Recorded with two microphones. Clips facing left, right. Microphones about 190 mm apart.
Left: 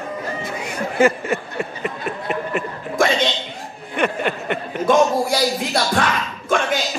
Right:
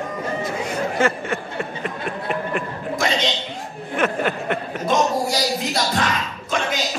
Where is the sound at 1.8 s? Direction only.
5° left (ahead or behind).